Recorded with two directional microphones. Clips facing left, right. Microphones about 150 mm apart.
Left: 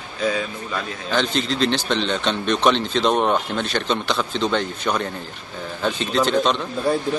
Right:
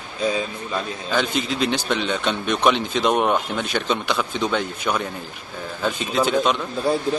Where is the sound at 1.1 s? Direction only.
10° right (ahead or behind).